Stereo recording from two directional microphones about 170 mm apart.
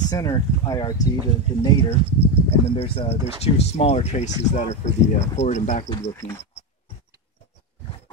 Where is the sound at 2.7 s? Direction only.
35° left (ahead or behind).